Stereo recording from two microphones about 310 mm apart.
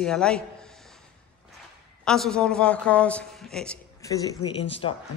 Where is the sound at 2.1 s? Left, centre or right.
Centre.